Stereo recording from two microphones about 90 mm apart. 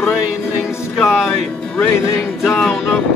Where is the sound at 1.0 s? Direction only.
5° right (ahead or behind).